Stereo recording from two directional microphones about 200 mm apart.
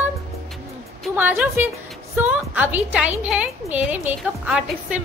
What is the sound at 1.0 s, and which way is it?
A woman's voice, 5° right (ahead or behind).